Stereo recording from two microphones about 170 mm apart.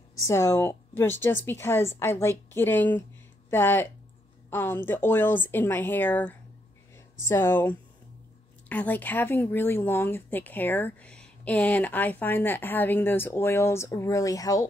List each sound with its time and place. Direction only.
0.2 s speech: 15° left (ahead or behind)